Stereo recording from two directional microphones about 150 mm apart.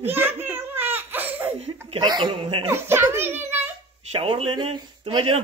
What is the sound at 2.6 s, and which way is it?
A child's voice, 15° right (ahead or behind).